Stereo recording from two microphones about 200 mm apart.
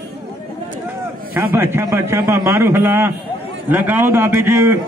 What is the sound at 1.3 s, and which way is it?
A man's voice, 10° right (ahead or behind).